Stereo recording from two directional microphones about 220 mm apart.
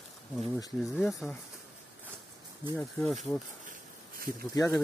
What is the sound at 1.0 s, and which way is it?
Speech, centre (ahead or behind).